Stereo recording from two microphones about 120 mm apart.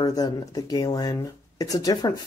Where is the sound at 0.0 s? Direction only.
30° left (ahead or behind).